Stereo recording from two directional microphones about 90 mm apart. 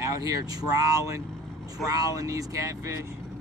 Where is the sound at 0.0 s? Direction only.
35° right (ahead or behind).